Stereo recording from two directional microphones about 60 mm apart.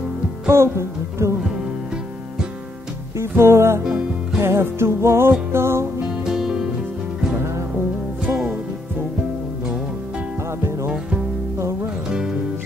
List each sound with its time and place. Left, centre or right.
0.5 s speech: right
3.2 s music: right
6.2 s music: centre
11.5 s music: right